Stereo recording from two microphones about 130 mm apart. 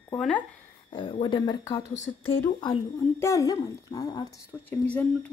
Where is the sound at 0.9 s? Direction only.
40° left (ahead or behind).